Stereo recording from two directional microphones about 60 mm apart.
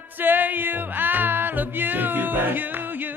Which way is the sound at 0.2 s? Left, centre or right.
Right.